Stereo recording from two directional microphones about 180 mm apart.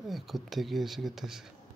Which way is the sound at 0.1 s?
Centre (ahead or behind).